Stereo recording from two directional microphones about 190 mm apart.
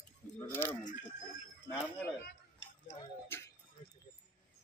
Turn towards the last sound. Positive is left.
turn(degrees=10)  # may be behind; listen again after turning